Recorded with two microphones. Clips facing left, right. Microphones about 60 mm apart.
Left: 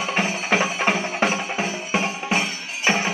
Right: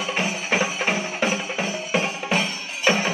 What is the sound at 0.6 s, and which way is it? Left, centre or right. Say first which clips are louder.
Music: left 1 dB; left.